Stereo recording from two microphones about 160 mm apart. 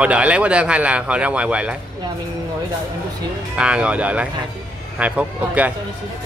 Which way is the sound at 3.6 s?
5° right (ahead or behind).